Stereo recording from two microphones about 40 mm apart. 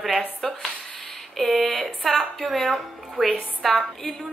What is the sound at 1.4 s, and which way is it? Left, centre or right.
A woman's voice, centre.